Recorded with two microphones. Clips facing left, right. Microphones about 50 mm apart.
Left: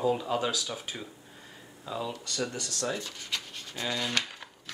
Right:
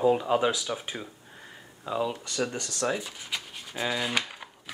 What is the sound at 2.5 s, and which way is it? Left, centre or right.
Rub, right.